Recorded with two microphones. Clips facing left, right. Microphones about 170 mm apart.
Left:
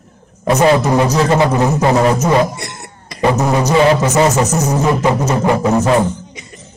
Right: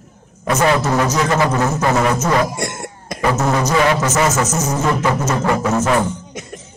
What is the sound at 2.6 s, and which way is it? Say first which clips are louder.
Cough: right 5 dB; 50° right (ahead or behind).